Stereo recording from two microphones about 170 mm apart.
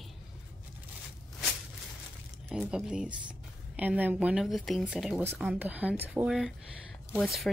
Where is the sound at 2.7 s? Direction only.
5° right (ahead or behind).